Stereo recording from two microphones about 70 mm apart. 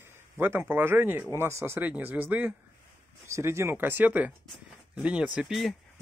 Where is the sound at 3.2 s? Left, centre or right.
Right; by 5.5 s centre.